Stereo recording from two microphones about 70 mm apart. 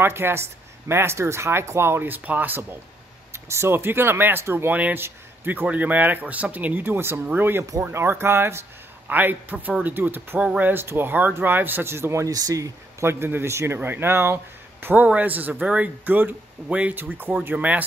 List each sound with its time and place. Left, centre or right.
0.0 s speech: right
3.3 s speech: right
4.7 s speech: right
12.3 s speech: right
13.0 s speech: right